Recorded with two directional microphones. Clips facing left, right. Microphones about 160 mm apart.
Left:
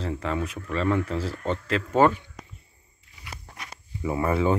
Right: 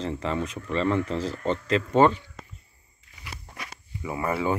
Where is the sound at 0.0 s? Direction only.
Centre (ahead or behind).